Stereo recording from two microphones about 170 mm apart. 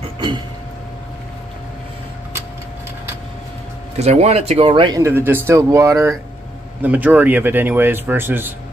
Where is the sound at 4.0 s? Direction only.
40° right (ahead or behind).